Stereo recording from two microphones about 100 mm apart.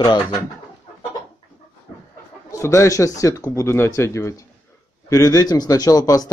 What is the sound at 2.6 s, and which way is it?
Speech, 30° left (ahead or behind).